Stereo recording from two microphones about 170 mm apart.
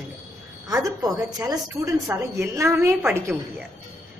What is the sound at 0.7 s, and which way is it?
A woman's voice, 20° right (ahead or behind).